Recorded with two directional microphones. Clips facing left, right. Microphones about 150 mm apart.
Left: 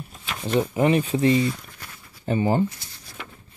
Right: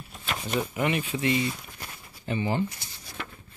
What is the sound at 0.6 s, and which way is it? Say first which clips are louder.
Speech: left 8 dB; 35° left (ahead or behind).